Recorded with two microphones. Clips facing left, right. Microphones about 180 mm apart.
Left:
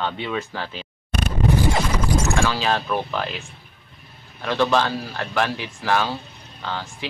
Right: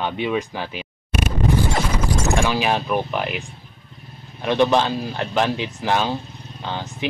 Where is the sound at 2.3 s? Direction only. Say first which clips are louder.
Right 2 dB; 15° right (ahead or behind).